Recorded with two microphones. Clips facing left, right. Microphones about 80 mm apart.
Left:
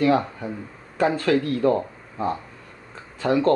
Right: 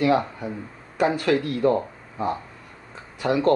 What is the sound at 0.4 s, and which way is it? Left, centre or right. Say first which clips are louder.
Speech: even; centre.